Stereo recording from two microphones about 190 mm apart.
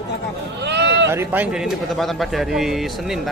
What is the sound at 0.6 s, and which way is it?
Speech, 65° right (ahead or behind).